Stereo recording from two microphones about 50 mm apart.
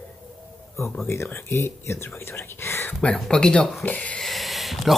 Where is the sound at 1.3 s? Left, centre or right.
Left.